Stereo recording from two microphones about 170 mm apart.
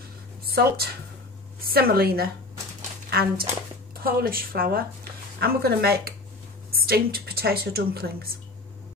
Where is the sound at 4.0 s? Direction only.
60° right (ahead or behind).